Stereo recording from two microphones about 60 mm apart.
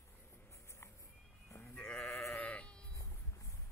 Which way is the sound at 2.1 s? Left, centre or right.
Left.